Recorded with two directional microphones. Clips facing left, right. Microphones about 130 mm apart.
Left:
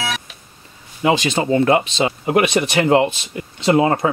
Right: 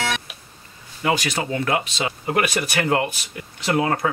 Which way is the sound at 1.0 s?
25° left (ahead or behind).